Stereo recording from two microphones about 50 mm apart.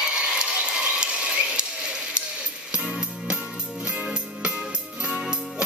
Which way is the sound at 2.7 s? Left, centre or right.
Centre.